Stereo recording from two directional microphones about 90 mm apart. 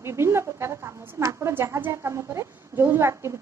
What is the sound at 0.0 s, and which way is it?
A woman's voice, 30° right (ahead or behind).